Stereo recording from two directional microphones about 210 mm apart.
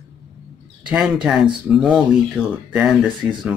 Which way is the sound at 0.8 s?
5° right (ahead or behind).